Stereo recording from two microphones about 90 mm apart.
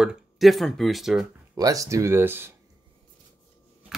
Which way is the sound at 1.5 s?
40° right (ahead or behind).